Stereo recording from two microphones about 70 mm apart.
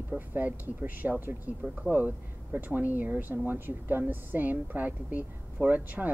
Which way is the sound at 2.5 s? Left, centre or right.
Right.